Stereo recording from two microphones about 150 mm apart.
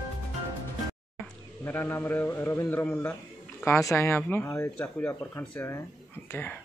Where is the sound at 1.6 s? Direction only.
15° left (ahead or behind).